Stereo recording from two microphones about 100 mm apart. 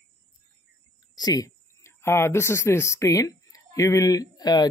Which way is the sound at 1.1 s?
40° left (ahead or behind).